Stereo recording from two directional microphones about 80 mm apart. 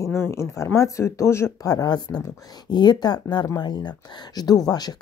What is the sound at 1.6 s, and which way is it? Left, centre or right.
A woman's voice, left.